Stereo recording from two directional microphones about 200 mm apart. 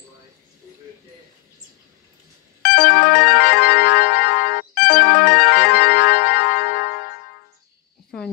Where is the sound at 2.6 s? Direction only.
50° left (ahead or behind).